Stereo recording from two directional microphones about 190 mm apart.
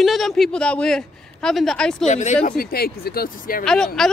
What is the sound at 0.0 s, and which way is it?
A man's voice, centre (ahead or behind).